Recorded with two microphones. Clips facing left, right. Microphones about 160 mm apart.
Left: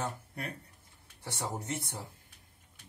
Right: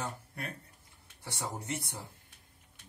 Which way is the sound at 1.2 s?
20° left (ahead or behind).